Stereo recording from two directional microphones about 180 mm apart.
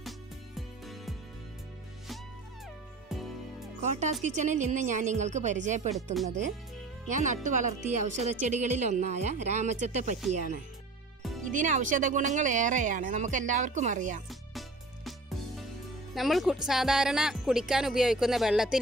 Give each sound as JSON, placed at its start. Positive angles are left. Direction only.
{"t": 0.6, "sound": "music", "side_deg": 0}
{"t": 3.8, "sound": "speech", "side_deg": -40}
{"t": 11.5, "sound": "speech", "side_deg": -45}
{"t": 16.2, "sound": "speech", "side_deg": 0}